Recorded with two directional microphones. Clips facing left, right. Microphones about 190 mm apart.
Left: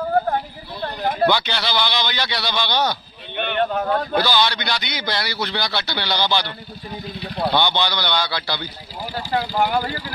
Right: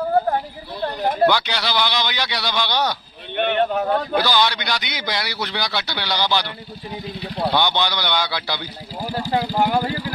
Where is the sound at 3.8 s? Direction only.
15° right (ahead or behind).